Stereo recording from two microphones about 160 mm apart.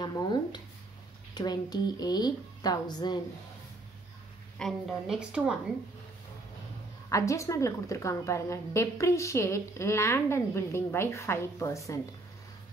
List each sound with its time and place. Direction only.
0.0 s a woman's voice: 25° left (ahead or behind)
4.6 s a woman's voice: centre (ahead or behind)
7.1 s a woman's voice: 20° left (ahead or behind)